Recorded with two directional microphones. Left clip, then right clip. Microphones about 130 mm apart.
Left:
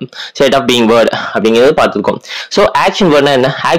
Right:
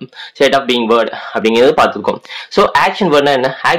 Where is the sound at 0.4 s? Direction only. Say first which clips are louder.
Left 2 dB; 65° left (ahead or behind).